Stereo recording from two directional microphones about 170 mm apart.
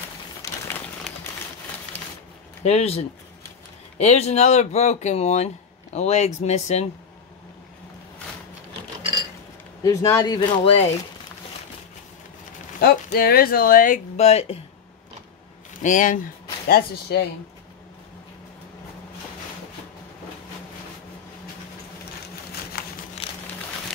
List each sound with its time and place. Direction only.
2.6 s speech: 35° left (ahead or behind)
4.0 s speech: 40° left (ahead or behind)
9.8 s speech: 25° left (ahead or behind)
12.8 s speech: 65° left (ahead or behind)
14.1 s speech: 40° left (ahead or behind)
15.8 s speech: 50° left (ahead or behind)
16.6 s speech: 65° left (ahead or behind)